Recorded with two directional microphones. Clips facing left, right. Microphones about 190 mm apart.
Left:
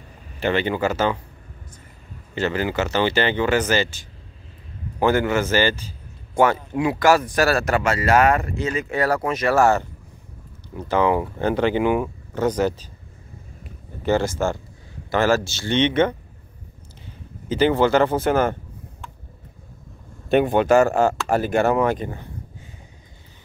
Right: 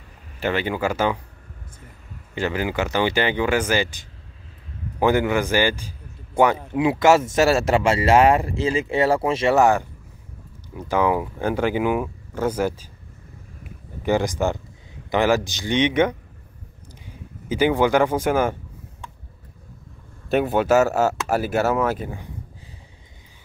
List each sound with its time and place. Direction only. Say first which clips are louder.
0.4 s speech: left 2 dB; 5° right (ahead or behind)
2.3 s speech: left 1 dB; 10° right (ahead or behind)
14.0 s speech: even; 15° right (ahead or behind)
17.5 s speech: left 1 dB; 10° right (ahead or behind)
20.2 s speech: left 2 dB; 5° right (ahead or behind)